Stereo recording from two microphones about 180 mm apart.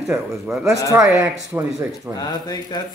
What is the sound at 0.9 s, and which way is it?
Speech, 15° right (ahead or behind).